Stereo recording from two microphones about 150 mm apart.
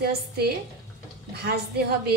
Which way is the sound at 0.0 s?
90° right.